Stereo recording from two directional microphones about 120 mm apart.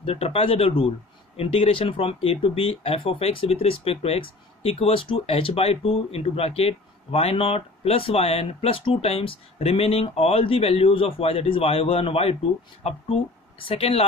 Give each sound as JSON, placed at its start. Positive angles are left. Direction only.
{"t": 0.0, "sound": "speech", "side_deg": 55}